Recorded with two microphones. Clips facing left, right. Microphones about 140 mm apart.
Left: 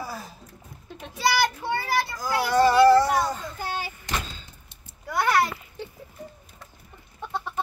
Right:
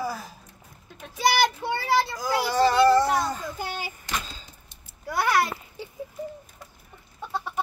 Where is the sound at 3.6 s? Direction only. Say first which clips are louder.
Left 1 dB; 15° right (ahead or behind).